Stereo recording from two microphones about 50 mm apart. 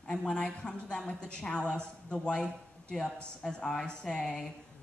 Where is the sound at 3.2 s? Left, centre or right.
Centre.